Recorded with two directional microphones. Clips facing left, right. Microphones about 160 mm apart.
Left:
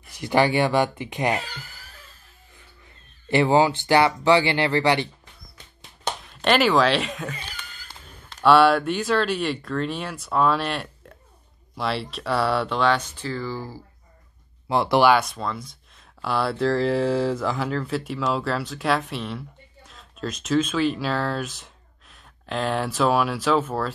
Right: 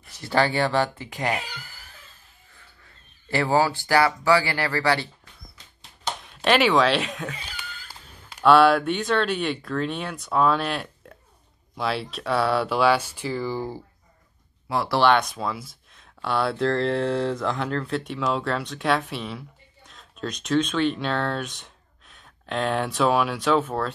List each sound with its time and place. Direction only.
0.1 s speech: 15° left (ahead or behind)
3.3 s speech: 20° left (ahead or behind)
6.2 s a sound: centre (ahead or behind)
8.5 s speech: centre (ahead or behind); by 13.8 s 20° right (ahead or behind)
14.7 s speech: 25° left (ahead or behind)
15.0 s speech: 5° left (ahead or behind)